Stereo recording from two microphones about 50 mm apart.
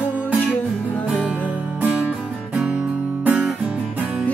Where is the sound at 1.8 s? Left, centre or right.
Right.